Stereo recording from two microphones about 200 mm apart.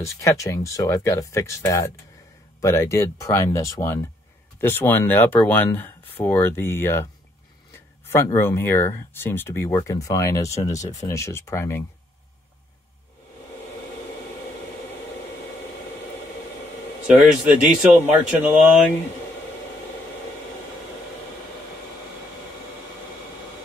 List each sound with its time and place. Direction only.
0.0 s speech: 15° left (ahead or behind)
8.1 s speech: 10° left (ahead or behind)
17.1 s speech: 5° right (ahead or behind)